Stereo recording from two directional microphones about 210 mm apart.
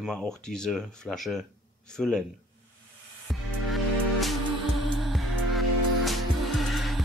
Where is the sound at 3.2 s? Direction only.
Centre (ahead or behind).